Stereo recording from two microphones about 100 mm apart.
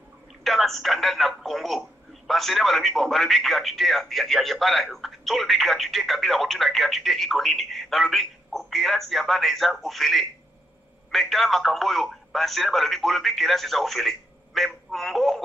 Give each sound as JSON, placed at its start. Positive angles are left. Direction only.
{"t": 0.4, "sound": "speech", "side_deg": 0}